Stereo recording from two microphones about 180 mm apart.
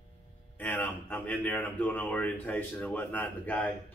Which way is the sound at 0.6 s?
10° left (ahead or behind).